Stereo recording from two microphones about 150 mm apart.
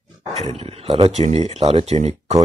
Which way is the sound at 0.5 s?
40° right (ahead or behind).